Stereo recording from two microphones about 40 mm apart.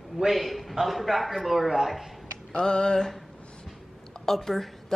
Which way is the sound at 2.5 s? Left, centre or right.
Left.